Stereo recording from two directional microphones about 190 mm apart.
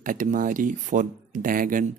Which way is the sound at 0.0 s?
45° right (ahead or behind).